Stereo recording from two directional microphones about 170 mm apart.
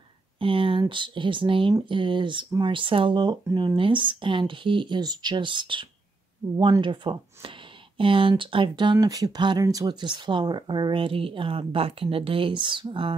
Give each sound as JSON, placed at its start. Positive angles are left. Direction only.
{"t": 0.4, "sound": "speech", "side_deg": -30}